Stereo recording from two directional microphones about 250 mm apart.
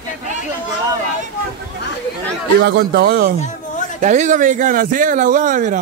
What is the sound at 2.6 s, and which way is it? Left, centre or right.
Speech, right.